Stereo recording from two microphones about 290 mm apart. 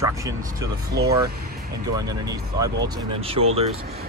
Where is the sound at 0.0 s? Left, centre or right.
Centre.